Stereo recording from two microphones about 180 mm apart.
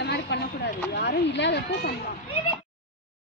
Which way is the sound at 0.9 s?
75° left (ahead or behind).